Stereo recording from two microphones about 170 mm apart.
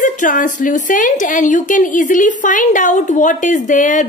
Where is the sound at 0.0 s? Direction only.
50° left (ahead or behind).